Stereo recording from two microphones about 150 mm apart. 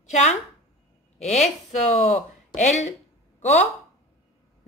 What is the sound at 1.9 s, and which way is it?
Speech, 50° left (ahead or behind).